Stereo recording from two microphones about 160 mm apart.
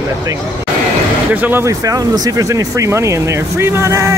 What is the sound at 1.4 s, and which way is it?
Speech, 15° right (ahead or behind).